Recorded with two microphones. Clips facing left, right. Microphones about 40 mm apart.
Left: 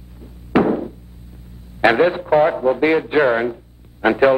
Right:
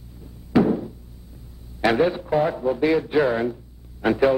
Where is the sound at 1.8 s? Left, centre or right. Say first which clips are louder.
Left 5 dB; left.